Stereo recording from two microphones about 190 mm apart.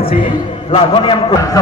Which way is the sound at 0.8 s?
25° left (ahead or behind).